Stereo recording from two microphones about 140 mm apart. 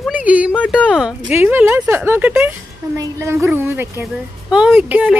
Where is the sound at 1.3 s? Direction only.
15° right (ahead or behind).